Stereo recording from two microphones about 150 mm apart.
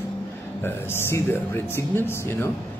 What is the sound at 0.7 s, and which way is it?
Speech, 15° left (ahead or behind).